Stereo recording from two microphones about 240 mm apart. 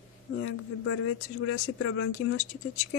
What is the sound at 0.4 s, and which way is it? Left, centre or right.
Speech, left.